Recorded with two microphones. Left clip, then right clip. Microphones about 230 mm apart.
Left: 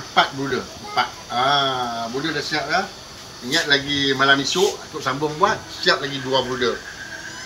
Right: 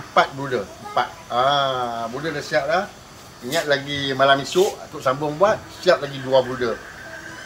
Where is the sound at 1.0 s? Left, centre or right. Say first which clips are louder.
Even; right.